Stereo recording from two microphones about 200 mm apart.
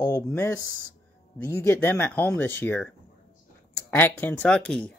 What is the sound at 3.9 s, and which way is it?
Speech, 10° left (ahead or behind).